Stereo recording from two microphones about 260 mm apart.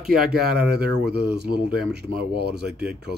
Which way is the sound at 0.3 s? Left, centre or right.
Right.